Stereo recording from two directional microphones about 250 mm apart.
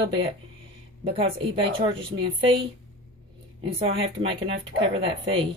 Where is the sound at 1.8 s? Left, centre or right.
Right.